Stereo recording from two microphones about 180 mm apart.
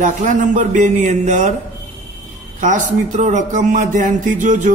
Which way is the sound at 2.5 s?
45° right (ahead or behind).